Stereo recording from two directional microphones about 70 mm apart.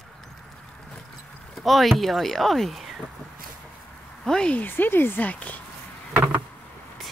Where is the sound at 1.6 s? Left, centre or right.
Centre.